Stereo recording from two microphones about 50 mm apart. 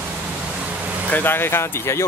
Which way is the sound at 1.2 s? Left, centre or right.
Left.